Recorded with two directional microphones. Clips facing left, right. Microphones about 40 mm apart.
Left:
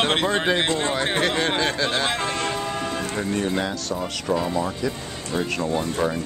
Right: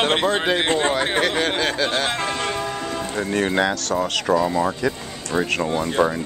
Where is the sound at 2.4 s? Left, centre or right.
Right.